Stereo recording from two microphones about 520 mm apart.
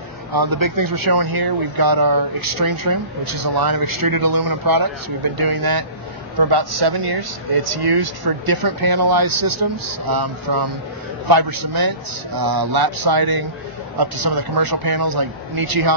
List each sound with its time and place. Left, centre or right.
0.3 s speech: right